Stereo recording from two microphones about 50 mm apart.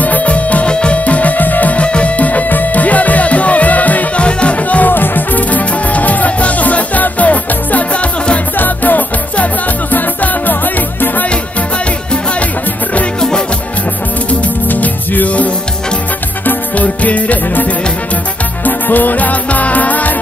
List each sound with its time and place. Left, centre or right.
0.0 s music: left
8.5 s music: left
14.7 s music: left
18.7 s music: left